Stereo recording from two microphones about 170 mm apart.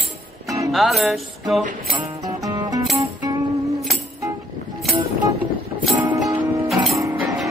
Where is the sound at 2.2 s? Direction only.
20° right (ahead or behind).